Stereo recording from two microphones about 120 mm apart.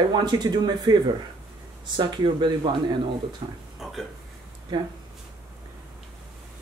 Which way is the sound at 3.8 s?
Centre (ahead or behind).